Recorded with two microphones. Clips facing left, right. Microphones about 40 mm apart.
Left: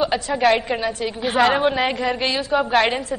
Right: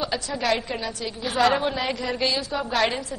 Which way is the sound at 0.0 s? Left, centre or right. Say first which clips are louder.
Left 8 dB; left.